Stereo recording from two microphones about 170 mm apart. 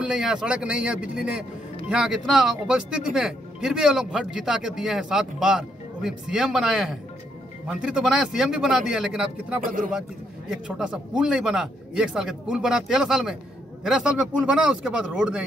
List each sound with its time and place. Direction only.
0.0 s speech: 5° right (ahead or behind)
9.6 s speech: 50° right (ahead or behind)
10.5 s speech: 5° right (ahead or behind)